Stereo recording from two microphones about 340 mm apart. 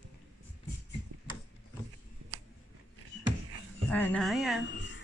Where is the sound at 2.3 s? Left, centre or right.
Right.